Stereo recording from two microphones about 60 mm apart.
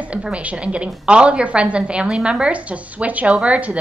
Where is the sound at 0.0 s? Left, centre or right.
Centre.